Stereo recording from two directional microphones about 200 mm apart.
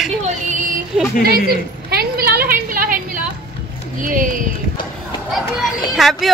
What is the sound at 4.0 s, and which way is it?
Speech, 40° right (ahead or behind).